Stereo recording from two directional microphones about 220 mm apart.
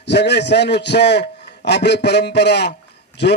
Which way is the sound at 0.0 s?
50° left (ahead or behind).